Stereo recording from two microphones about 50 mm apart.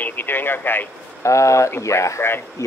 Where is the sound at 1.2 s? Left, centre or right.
Left.